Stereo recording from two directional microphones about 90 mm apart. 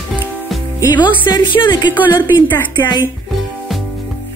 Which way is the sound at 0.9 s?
60° left (ahead or behind).